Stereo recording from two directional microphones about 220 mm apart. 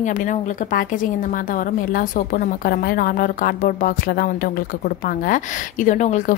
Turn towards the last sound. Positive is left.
turn(degrees=35)  # may be behind; listen again after turning